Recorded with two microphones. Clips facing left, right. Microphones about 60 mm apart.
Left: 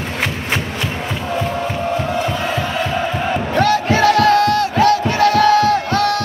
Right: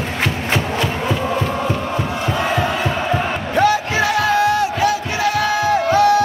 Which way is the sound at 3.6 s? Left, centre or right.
Centre.